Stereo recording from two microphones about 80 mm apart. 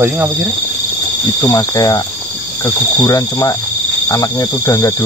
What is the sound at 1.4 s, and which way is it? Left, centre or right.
Speech, left.